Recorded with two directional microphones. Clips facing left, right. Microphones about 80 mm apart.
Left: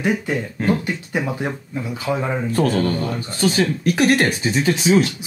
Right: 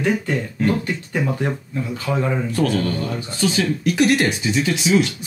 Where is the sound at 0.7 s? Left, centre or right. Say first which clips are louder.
Left 1 dB; centre.